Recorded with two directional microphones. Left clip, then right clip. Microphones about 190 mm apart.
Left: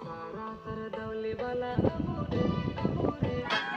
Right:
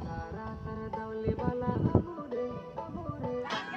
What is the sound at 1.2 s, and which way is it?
Music, 60° right (ahead or behind).